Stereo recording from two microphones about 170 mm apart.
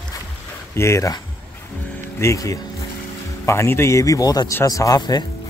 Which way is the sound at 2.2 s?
15° left (ahead or behind).